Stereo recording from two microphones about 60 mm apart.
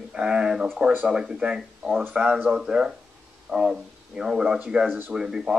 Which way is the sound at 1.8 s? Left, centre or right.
Centre.